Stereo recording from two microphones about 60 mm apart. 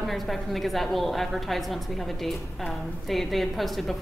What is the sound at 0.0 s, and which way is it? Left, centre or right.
A woman's voice, centre.